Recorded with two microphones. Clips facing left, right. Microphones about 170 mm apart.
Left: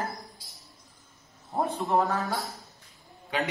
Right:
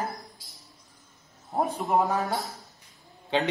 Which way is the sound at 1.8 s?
20° right (ahead or behind).